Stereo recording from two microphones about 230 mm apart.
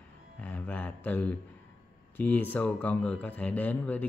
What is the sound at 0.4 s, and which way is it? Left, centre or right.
Speech, centre.